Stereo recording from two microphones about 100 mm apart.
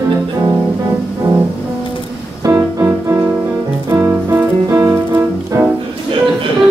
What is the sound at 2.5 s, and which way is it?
Music, 35° right (ahead or behind).